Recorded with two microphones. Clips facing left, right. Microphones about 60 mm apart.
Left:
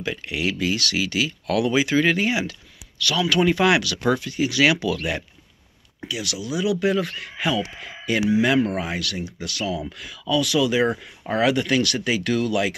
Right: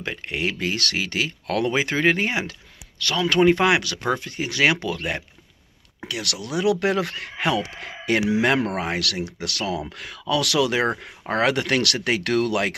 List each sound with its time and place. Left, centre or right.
0.0 s speech: right
5.9 s speech: right